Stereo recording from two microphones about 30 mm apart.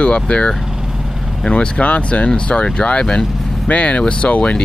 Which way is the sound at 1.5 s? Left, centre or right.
Left.